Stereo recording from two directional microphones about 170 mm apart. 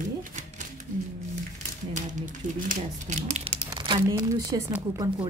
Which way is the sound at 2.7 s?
45° right (ahead or behind).